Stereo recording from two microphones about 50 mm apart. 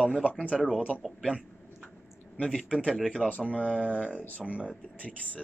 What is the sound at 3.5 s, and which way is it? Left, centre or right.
Speech, right.